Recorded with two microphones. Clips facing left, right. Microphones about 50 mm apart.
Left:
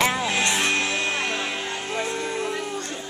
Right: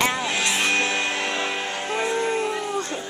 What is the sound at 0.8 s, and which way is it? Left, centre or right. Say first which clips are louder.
Music: right 1 dB; centre.